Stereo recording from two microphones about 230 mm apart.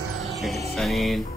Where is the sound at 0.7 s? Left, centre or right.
Centre.